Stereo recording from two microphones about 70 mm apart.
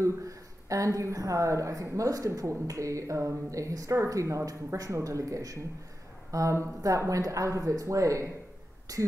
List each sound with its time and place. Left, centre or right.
0.0 s a woman's voice: right